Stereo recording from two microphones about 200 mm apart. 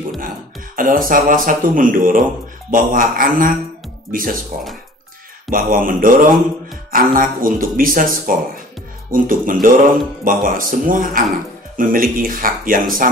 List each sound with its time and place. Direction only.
0.7 s speech: 45° right (ahead or behind)
5.5 s speech: 45° right (ahead or behind)